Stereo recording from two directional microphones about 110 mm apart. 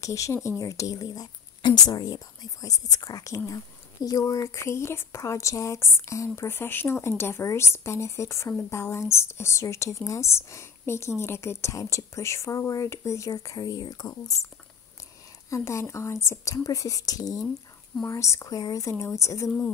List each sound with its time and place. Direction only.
0.0 s a woman's voice: 30° left (ahead or behind)
15.5 s a woman's voice: 25° left (ahead or behind)